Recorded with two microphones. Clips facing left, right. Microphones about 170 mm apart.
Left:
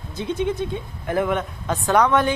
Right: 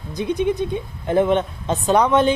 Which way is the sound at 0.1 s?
15° right (ahead or behind).